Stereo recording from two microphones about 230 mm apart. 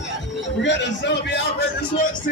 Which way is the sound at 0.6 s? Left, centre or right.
Left.